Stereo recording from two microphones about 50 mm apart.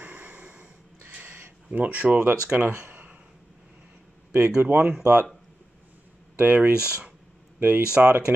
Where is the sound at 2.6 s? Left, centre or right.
Right.